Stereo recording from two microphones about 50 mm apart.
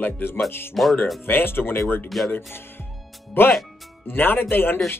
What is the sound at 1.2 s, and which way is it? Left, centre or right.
Speech, left.